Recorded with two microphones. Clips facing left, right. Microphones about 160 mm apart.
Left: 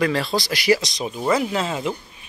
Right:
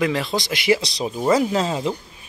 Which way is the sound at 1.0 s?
15° right (ahead or behind).